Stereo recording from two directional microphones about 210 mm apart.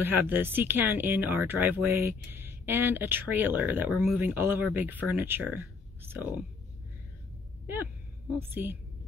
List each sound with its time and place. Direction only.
0.0 s speech: 10° right (ahead or behind)
7.6 s speech: 10° right (ahead or behind)